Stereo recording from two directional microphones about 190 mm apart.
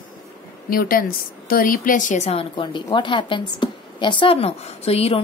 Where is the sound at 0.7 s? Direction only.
50° left (ahead or behind).